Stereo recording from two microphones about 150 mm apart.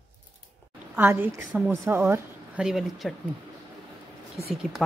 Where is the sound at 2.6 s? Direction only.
5° right (ahead or behind).